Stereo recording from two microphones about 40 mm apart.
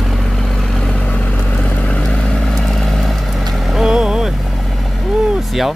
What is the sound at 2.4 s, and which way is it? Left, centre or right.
Vehicle, centre.